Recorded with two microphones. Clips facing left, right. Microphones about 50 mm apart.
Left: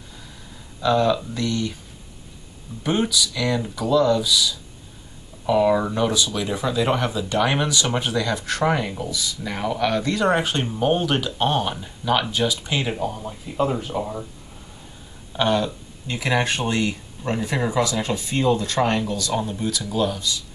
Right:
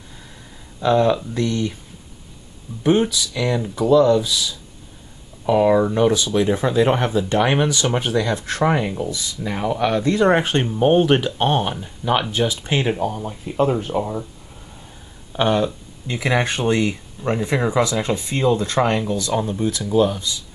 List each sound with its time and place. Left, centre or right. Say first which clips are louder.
0.7 s speech: right 3 dB; right
2.8 s speech: right 4 dB; centre
8.6 s speech: right 3 dB; centre
9.8 s speech: right 4 dB; centre
13.7 s speech: right 4 dB; right
15.3 s speech: right 2 dB; centre
19.3 s speech: right 3 dB; centre
19.6 s speech: right 5 dB; centre